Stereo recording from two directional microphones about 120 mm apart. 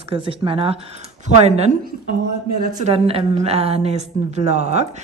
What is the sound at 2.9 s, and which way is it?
A woman's voice, 55° right (ahead or behind).